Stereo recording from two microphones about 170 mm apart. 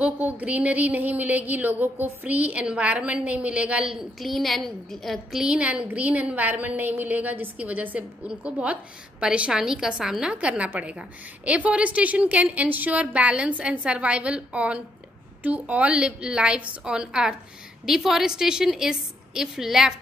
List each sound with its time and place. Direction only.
0.0 s a woman's voice: 10° right (ahead or behind)